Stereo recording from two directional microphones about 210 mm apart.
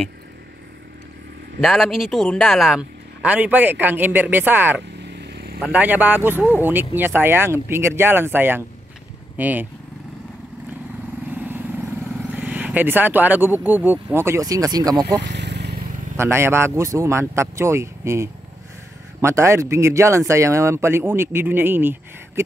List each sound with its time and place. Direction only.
1.6 s speech: centre (ahead or behind)
5.2 s vehicle: 50° right (ahead or behind)
5.6 s speech: 5° right (ahead or behind)
11.2 s vehicle: 10° right (ahead or behind)
12.2 s speech: 10° right (ahead or behind)
15.2 s vehicle: 55° right (ahead or behind)
16.2 s speech: 10° right (ahead or behind)